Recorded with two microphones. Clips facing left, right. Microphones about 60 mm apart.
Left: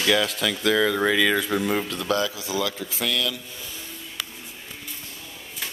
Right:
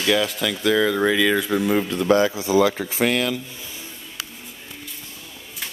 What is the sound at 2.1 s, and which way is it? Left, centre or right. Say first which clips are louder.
Speech: right 8 dB; right.